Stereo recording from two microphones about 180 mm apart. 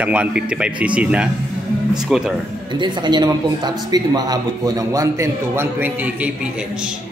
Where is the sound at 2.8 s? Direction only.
25° right (ahead or behind).